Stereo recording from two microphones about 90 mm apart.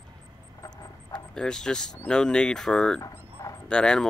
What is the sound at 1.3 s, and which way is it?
Speech, 5° left (ahead or behind).